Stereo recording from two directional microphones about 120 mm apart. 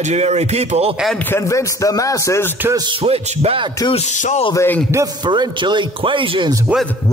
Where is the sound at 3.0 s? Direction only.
55° right (ahead or behind).